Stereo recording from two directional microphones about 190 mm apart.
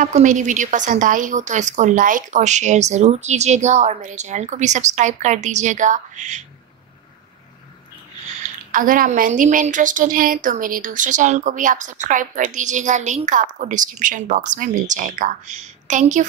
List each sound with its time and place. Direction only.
0.0 s a woman's voice: 40° right (ahead or behind)
8.7 s a woman's voice: 45° right (ahead or behind)